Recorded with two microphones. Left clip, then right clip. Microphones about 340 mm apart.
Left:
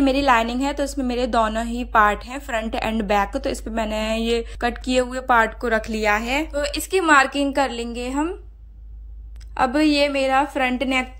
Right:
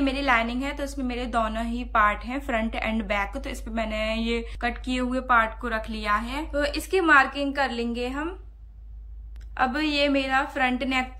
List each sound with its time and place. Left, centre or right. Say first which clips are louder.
0.0 s a woman's voice: left 6 dB; centre
9.6 s a woman's voice: left 5 dB; centre